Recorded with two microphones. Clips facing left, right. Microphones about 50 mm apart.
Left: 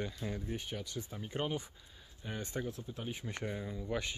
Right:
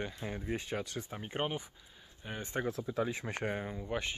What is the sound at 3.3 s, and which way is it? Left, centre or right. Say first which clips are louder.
Speech: right 3 dB; right.